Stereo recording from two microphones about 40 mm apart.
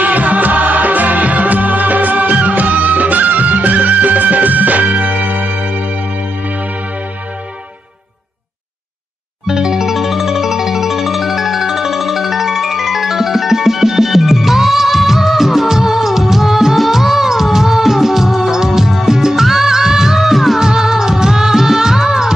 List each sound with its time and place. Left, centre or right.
0.0 s music: right
9.5 s music: centre